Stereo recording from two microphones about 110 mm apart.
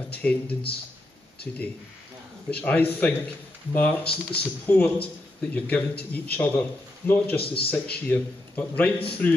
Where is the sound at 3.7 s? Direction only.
10° left (ahead or behind).